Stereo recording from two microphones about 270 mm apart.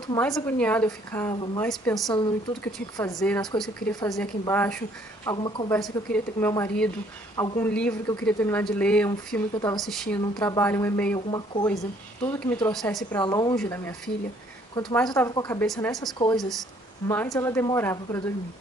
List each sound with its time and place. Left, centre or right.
0.1 s a woman's voice: centre
1.6 s speech: centre
2.1 s a woman's voice: centre
11.1 s a woman's voice: centre
15.6 s a woman's voice: centre